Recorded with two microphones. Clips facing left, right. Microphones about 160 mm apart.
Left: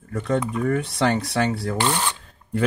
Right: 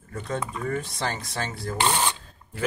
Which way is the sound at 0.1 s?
65° left (ahead or behind).